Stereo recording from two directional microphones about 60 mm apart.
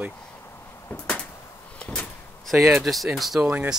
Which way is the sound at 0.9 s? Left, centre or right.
Centre.